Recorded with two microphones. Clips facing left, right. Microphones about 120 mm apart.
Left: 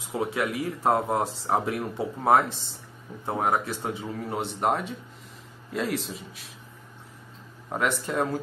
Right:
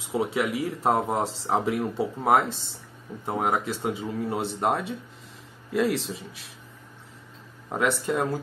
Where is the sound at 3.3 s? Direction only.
15° right (ahead or behind).